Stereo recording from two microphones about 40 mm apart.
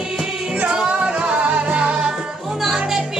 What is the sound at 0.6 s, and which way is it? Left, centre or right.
Music, right.